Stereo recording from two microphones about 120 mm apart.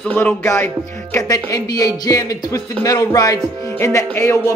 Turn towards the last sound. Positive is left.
turn(degrees=20)  # may be behind; listen again after turning